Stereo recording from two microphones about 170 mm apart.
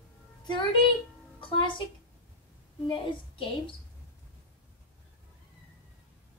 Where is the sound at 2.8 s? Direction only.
30° left (ahead or behind).